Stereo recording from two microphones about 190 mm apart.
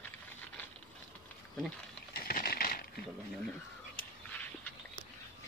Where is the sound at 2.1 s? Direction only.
50° left (ahead or behind).